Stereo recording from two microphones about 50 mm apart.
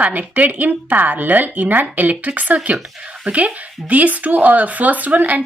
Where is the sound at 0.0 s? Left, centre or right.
Right.